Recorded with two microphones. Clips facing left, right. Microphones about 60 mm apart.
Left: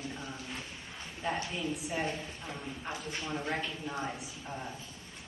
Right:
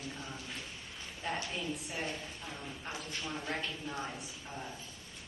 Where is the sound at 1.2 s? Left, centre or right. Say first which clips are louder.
Left 3 dB; centre.